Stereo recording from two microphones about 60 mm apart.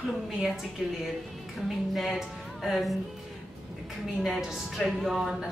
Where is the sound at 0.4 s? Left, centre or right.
Centre.